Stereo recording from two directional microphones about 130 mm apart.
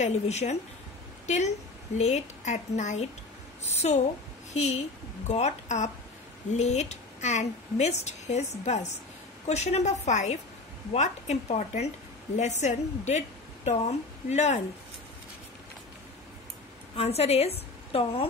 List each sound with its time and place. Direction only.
0.0 s a woman's voice: 60° left (ahead or behind)
16.9 s a woman's voice: 50° left (ahead or behind)